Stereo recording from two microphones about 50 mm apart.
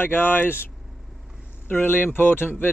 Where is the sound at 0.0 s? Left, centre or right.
Left.